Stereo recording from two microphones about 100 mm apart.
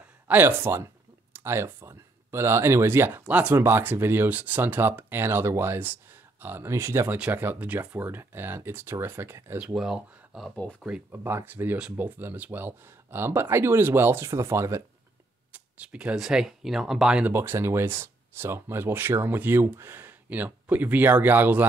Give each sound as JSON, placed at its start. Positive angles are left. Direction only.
{"t": 0.3, "sound": "speech", "side_deg": -25}
{"t": 7.2, "sound": "speech", "side_deg": -15}
{"t": 9.8, "sound": "speech", "side_deg": -5}
{"t": 10.5, "sound": "speech", "side_deg": 10}
{"t": 11.1, "sound": "speech", "side_deg": -20}
{"t": 15.5, "sound": "speech", "side_deg": -10}
{"t": 17.3, "sound": "speech", "side_deg": -25}